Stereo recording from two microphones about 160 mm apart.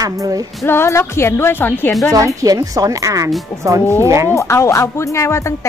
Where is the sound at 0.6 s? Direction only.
15° left (ahead or behind).